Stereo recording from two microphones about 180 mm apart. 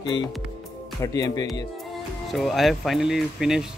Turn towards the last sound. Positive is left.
turn(degrees=-5)  # may be behind; listen again after turning